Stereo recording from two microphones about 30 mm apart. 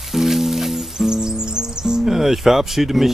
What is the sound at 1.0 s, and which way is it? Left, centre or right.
Music, right.